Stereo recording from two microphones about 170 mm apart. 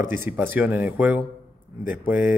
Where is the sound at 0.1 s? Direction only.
10° right (ahead or behind).